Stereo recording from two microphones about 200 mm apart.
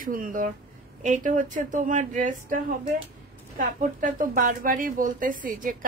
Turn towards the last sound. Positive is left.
turn(degrees=-40)  # may be behind; listen again after turning